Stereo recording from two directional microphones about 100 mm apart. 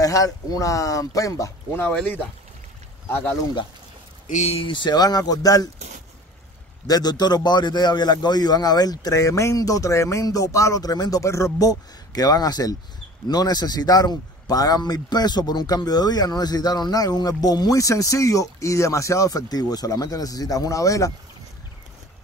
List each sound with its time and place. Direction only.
0.0 s a man's voice: 35° left (ahead or behind)
1.8 s speech: 15° left (ahead or behind)
4.5 s a man's voice: 60° left (ahead or behind); by 5.7 s 35° left (ahead or behind)
6.9 s a man's voice: 40° left (ahead or behind)